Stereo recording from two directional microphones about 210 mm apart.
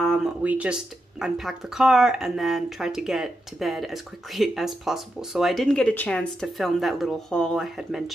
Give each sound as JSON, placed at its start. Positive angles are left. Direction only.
{"t": 0.0, "sound": "speech", "side_deg": 0}